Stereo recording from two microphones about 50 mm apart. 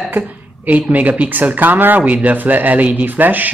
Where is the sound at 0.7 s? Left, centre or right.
Right.